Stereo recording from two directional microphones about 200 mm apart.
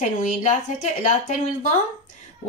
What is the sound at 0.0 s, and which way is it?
Speech, 40° left (ahead or behind).